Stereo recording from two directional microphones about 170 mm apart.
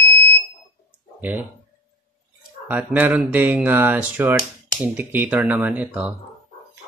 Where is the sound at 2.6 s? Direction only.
10° right (ahead or behind).